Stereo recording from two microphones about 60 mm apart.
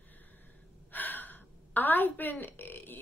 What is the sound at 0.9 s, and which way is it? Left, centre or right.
A woman's voice, left.